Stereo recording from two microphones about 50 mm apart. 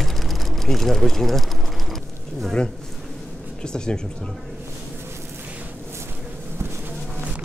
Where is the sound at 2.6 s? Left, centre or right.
Centre.